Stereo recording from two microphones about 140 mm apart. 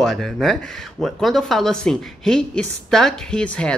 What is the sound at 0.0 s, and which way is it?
Speech, centre (ahead or behind).